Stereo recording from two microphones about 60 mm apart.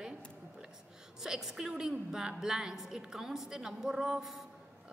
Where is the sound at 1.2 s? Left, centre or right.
Centre.